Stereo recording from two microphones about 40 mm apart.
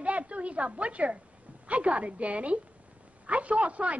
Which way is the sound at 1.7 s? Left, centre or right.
Right.